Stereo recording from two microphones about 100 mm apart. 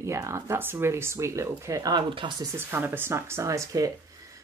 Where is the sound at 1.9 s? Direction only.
55° right (ahead or behind).